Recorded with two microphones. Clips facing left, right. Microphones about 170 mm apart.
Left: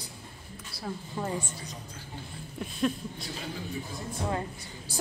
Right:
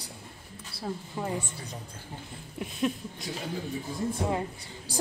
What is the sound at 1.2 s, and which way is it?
Speech, 15° right (ahead or behind).